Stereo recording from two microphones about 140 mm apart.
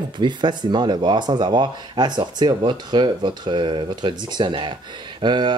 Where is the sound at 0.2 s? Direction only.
35° right (ahead or behind).